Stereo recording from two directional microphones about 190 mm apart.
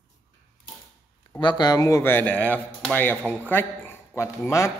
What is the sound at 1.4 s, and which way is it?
A man's voice, 25° left (ahead or behind).